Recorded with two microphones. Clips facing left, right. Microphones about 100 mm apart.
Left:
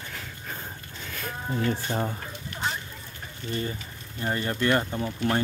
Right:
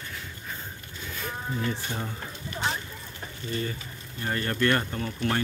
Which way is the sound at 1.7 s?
50° left (ahead or behind).